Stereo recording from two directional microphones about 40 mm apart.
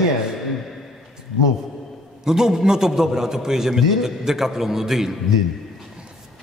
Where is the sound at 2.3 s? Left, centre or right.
Centre.